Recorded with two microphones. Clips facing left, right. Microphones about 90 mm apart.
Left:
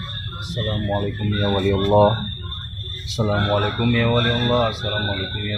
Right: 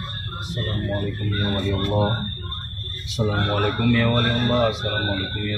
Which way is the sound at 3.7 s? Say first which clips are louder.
Left 1 dB; centre (ahead or behind).